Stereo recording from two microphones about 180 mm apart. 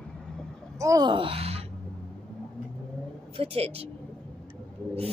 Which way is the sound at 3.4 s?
35° right (ahead or behind).